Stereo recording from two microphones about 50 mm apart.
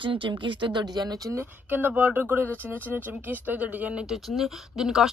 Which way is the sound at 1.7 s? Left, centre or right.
Right.